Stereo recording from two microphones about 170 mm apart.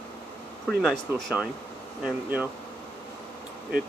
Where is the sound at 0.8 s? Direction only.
Centre (ahead or behind).